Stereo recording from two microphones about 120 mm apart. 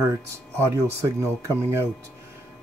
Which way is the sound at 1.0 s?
25° right (ahead or behind).